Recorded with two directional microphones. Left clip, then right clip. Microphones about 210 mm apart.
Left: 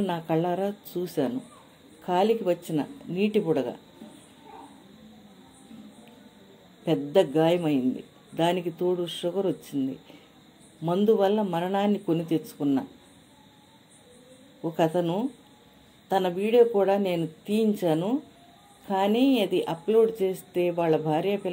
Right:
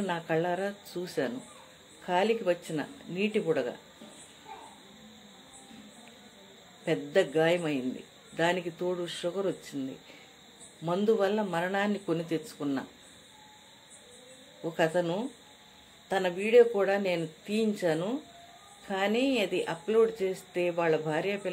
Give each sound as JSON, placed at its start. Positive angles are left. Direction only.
{"t": 0.0, "sound": "speech", "side_deg": 20}
{"t": 6.8, "sound": "speech", "side_deg": 20}
{"t": 14.6, "sound": "speech", "side_deg": 15}